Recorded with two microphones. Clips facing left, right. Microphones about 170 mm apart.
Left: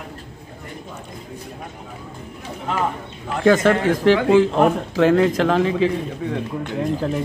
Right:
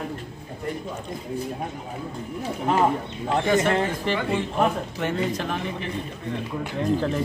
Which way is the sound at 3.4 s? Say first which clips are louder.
Left 8 dB; 90° left.